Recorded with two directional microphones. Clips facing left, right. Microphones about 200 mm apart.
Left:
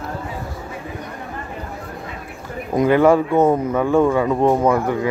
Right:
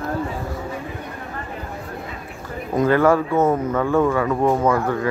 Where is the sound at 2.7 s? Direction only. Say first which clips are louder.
Left 2 dB; 15° left (ahead or behind).